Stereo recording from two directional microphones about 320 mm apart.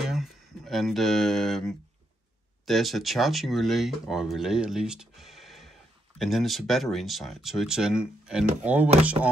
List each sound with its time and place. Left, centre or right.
0.0 s speech: centre